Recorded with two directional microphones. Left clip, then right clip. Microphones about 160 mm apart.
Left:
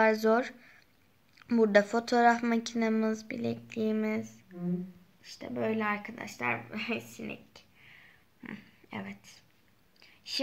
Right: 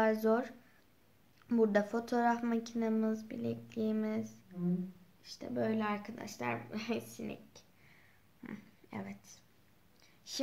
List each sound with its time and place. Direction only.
0.0 s speech: 35° left (ahead or behind)
5.4 s speech: 25° left (ahead or behind)
8.4 s a sound: 20° left (ahead or behind)